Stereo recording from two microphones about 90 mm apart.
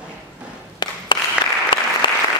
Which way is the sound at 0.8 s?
55° left (ahead or behind).